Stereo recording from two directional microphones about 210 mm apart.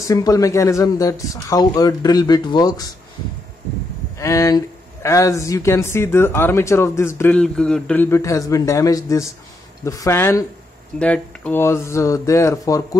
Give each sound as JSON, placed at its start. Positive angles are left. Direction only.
{"t": 0.0, "sound": "speech", "side_deg": 15}
{"t": 4.2, "sound": "speech", "side_deg": 15}